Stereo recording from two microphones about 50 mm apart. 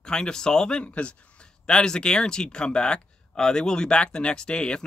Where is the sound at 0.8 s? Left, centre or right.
Left.